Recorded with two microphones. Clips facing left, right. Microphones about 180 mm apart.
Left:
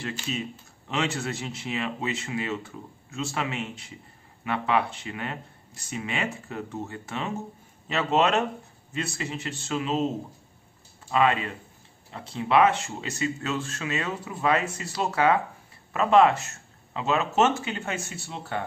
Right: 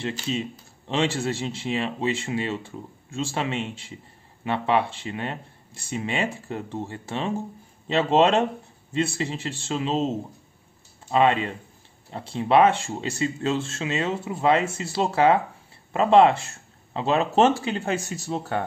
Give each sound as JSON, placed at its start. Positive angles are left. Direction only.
{"t": 0.1, "sound": "speech", "side_deg": -30}
{"t": 11.1, "sound": "speech", "side_deg": -30}